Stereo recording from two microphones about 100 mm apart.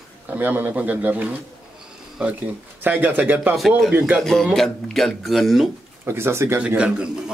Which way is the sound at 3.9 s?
15° right (ahead or behind).